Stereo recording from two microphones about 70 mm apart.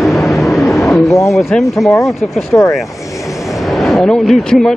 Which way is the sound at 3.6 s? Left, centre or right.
Centre.